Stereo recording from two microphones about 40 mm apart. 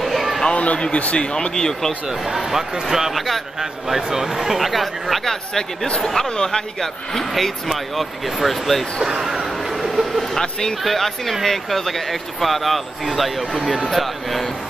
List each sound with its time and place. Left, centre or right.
0.0 s a sound: centre
0.5 s a sound: left
0.7 s speech: left
2.2 s speech: centre
5.2 s speech: centre
5.9 s speech: left; by 8.8 s centre
9.1 s a sound: centre
10.3 s speech: centre
10.8 s speech: centre